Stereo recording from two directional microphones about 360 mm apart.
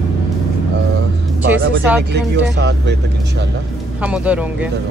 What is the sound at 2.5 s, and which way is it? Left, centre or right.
Speech, right.